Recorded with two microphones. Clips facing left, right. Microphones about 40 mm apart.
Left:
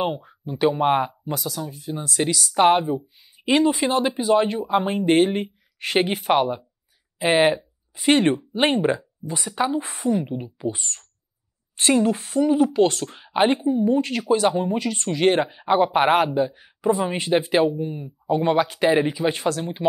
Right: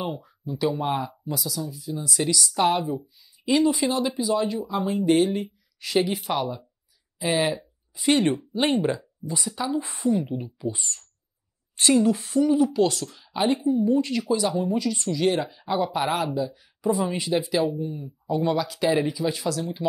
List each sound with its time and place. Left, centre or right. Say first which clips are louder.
0.0 s speech: left 6 dB; left
10.2 s speech: left 1 dB; left
10.6 s speech: left 3 dB; left